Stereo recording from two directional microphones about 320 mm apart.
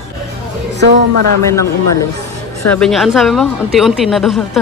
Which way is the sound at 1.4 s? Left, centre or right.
Centre.